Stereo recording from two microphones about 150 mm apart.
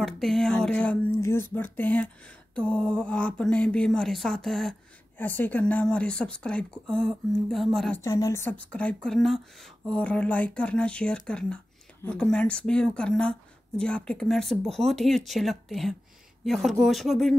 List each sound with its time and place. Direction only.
0.0 s speech: centre (ahead or behind)
5.1 s speech: 10° left (ahead or behind)
8.0 s speech: 20° left (ahead or behind); by 17.4 s centre (ahead or behind)